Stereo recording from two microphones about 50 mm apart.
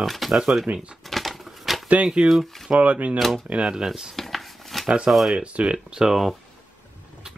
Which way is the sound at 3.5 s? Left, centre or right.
Centre.